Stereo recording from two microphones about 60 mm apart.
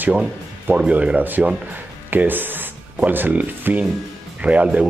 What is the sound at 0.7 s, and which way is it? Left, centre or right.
Speech, right.